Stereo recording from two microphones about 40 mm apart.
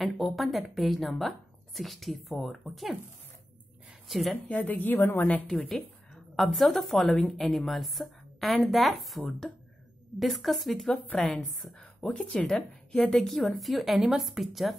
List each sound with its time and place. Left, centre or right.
0.0 s a woman's voice: centre
4.1 s a woman's voice: centre
4.5 s a woman's voice: left
4.9 s a woman's voice: left
5.5 s a woman's voice: centre
11.2 s a woman's voice: centre
12.4 s a woman's voice: centre
13.6 s a woman's voice: centre